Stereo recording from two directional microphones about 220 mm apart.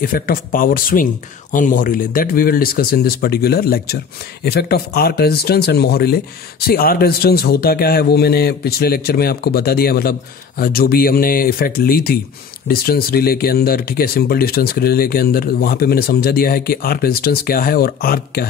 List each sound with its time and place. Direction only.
0.0 s speech: 40° left (ahead or behind)